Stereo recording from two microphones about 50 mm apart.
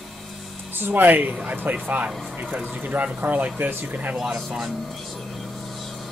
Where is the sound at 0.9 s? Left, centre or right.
Right.